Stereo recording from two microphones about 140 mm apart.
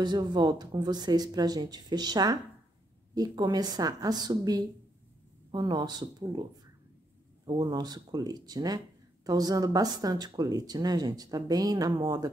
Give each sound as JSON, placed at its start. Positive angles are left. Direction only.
{"t": 0.0, "sound": "speech", "side_deg": -30}
{"t": 7.4, "sound": "speech", "side_deg": -30}